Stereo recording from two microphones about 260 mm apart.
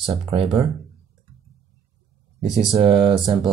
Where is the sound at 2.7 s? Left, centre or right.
Centre.